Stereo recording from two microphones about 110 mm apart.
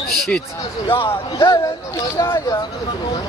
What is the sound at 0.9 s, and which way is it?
Speech, 50° left (ahead or behind).